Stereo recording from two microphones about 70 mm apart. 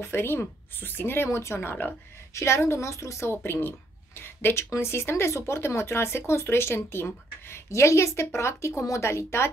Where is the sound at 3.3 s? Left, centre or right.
Left.